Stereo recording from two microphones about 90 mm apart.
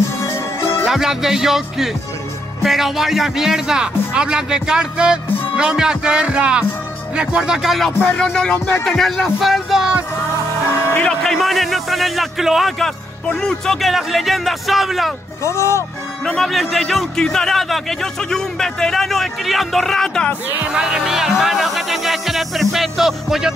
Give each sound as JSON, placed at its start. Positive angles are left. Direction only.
{"t": 0.2, "sound": "music", "side_deg": 30}
{"t": 0.8, "sound": "a man's voice", "side_deg": -5}
{"t": 8.2, "sound": "music", "side_deg": 10}
{"t": 8.8, "sound": "a man's voice", "side_deg": 0}
{"t": 11.0, "sound": "a man's voice", "side_deg": 5}
{"t": 15.4, "sound": "speech", "side_deg": 35}
{"t": 16.3, "sound": "a man's voice", "side_deg": 0}
{"t": 20.4, "sound": "a man's voice", "side_deg": -10}